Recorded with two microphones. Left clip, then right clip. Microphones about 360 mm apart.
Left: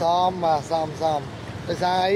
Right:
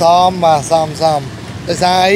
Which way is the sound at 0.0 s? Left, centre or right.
Right.